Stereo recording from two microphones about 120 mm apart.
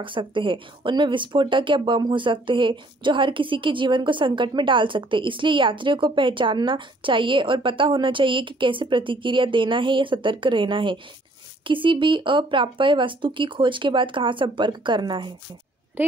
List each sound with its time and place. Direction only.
0.0 s speech: 45° right (ahead or behind)
16.0 s speech: 15° right (ahead or behind)